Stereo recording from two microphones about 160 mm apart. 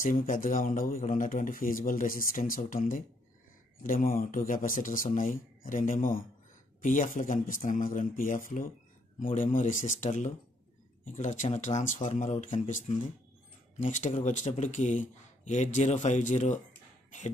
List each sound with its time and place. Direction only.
0.0 s a man's voice: 55° left (ahead or behind)